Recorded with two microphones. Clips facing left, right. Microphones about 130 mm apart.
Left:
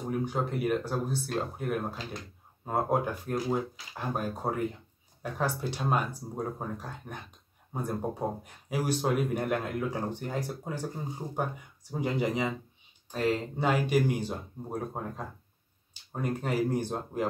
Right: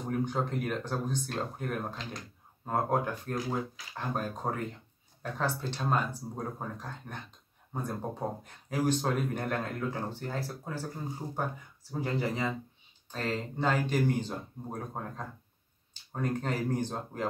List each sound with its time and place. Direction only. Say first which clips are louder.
0.0 s speech: left 1 dB; 5° left (ahead or behind)